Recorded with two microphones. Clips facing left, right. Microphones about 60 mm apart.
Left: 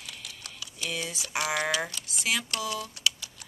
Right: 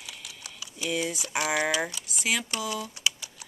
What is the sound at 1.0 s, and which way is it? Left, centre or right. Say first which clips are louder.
Speech: right 2 dB; right.